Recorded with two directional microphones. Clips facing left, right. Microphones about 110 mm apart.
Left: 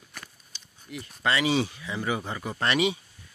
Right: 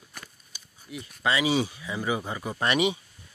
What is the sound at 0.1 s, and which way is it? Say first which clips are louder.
Speech: left 1 dB; 10° right (ahead or behind).